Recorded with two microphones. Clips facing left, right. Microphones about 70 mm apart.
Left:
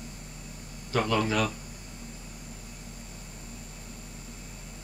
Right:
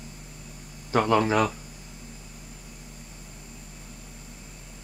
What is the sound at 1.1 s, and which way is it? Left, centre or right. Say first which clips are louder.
Speech: right 6 dB; right.